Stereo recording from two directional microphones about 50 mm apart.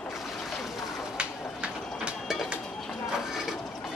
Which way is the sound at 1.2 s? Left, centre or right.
Right.